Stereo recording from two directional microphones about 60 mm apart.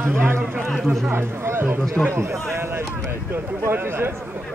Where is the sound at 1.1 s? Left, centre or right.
Right.